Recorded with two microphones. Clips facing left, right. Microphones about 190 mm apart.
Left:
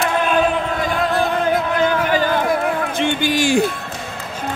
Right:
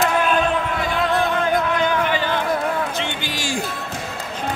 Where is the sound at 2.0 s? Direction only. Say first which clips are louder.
Left 4 dB; 40° left (ahead or behind); by 3.6 s 60° left (ahead or behind).